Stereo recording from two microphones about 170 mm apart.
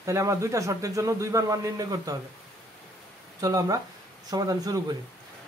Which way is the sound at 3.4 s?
20° right (ahead or behind).